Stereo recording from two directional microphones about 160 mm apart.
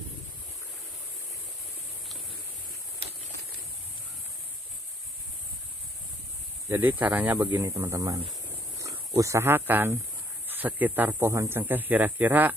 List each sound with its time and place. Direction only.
6.7 s speech: 10° right (ahead or behind)